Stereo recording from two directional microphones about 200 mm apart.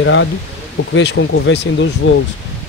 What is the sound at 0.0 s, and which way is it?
Speech, 70° left (ahead or behind).